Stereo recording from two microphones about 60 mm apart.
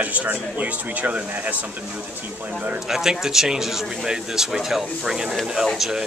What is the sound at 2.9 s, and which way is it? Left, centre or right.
Speech, centre.